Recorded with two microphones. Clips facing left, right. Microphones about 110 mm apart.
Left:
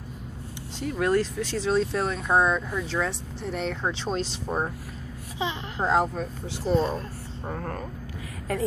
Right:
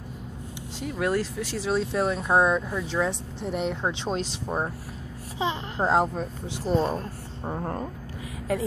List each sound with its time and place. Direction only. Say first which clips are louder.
0.7 s speech: left 2 dB; 5° right (ahead or behind)
5.4 s babbling: right 2 dB; 35° right (ahead or behind)
5.9 s speech: even; 20° right (ahead or behind)
8.5 s speech: right 1 dB; 5° right (ahead or behind)